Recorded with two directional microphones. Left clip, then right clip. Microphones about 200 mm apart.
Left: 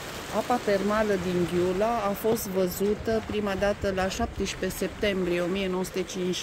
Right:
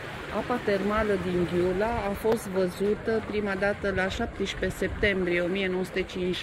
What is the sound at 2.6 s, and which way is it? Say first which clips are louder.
Speech: even; 30° left (ahead or behind).